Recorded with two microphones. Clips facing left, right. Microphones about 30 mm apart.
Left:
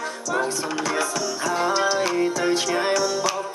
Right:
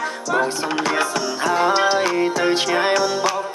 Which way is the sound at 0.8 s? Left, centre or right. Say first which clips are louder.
Right 4 dB; right.